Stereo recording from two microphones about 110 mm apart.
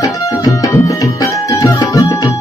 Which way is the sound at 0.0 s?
30° left (ahead or behind).